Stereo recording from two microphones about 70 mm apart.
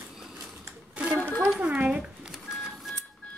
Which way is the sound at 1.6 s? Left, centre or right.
Centre.